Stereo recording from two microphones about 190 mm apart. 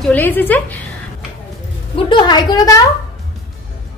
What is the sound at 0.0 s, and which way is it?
Speech, 10° left (ahead or behind).